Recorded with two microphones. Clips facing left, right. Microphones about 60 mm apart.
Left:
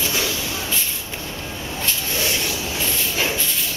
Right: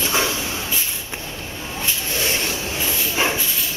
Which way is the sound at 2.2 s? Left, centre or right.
Right.